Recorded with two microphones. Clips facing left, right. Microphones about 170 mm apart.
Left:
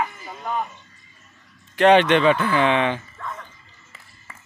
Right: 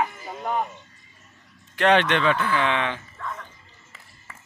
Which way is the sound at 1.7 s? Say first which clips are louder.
Left 5 dB; 5° left (ahead or behind).